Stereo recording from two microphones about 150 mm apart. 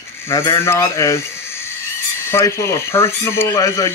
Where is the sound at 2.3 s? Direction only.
20° left (ahead or behind).